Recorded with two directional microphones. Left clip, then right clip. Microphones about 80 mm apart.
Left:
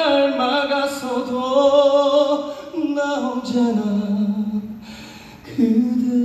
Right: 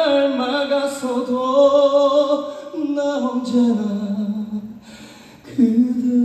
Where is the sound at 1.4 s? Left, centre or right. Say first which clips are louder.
Right 1 dB; centre.